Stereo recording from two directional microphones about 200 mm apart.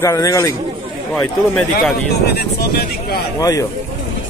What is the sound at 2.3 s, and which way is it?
Speech, 50° left (ahead or behind).